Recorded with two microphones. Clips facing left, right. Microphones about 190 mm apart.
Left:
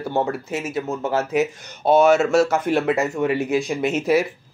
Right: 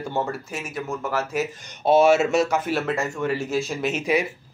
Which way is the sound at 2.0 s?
5° right (ahead or behind).